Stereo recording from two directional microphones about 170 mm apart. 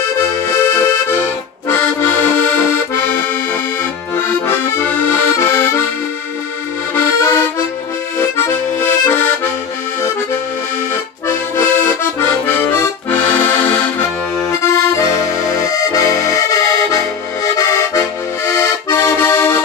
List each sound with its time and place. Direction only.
0.6 s accordion: 15° left (ahead or behind)
7.0 s accordion: 15° left (ahead or behind)
11.2 s accordion: 10° left (ahead or behind)